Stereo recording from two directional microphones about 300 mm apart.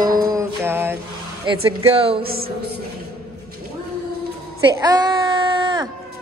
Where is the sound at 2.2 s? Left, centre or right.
Right.